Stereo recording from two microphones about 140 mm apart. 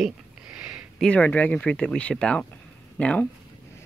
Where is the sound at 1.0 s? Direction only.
10° left (ahead or behind).